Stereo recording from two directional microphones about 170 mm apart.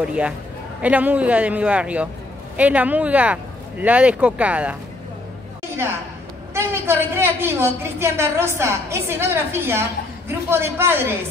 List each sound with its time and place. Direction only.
0.8 s a woman's voice: 10° right (ahead or behind)
6.5 s a woman's voice: 15° right (ahead or behind)